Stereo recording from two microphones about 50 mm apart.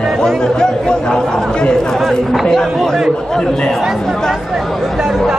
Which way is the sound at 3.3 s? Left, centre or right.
Centre.